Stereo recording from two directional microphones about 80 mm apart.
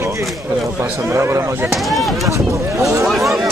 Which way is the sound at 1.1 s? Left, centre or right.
Right.